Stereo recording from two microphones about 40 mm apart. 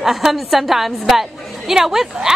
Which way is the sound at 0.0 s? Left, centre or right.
Centre.